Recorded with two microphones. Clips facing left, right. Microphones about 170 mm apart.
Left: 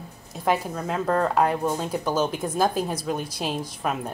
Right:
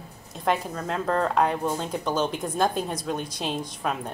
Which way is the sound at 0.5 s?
5° left (ahead or behind).